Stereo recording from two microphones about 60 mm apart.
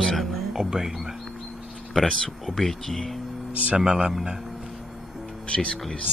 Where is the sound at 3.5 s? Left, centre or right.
Right.